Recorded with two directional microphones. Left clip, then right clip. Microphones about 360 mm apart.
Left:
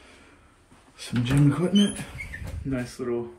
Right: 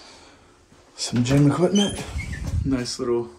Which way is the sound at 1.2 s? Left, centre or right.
Centre.